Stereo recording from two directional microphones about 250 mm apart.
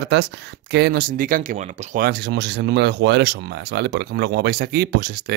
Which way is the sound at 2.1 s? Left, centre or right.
Right.